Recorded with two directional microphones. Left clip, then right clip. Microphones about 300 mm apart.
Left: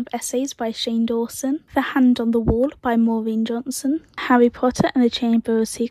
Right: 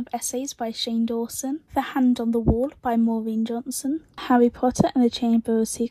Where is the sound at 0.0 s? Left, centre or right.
Left.